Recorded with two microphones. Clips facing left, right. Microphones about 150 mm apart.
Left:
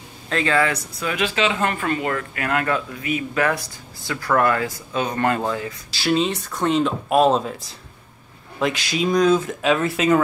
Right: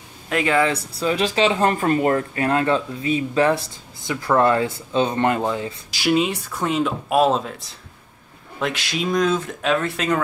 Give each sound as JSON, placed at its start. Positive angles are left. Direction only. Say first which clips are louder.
{"t": 0.3, "sound": "speech", "louder": "right 1 dB", "side_deg": -15}
{"t": 0.7, "sound": "speech", "louder": "right 3 dB", "side_deg": -30}